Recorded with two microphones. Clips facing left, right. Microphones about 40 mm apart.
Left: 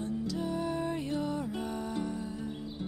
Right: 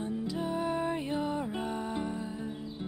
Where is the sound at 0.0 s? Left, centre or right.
Right.